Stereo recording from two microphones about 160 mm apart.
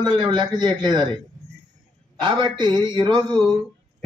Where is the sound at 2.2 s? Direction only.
30° right (ahead or behind).